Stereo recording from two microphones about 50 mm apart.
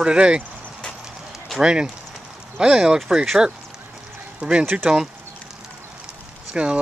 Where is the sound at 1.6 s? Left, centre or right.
Centre.